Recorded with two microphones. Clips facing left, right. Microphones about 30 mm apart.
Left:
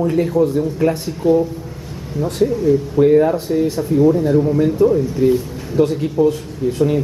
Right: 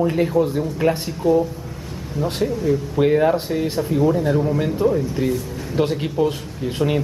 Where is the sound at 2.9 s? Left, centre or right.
Right.